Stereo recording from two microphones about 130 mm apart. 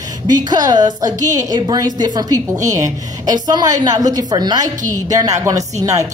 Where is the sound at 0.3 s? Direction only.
30° right (ahead or behind).